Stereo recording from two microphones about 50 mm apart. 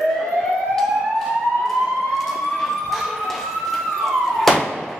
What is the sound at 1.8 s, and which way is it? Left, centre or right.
Emergency vehicle, centre.